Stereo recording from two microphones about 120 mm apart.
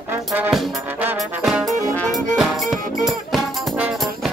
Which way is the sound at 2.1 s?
Centre (ahead or behind).